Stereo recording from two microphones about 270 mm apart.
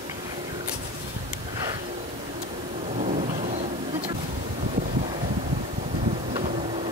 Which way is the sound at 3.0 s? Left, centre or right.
Right.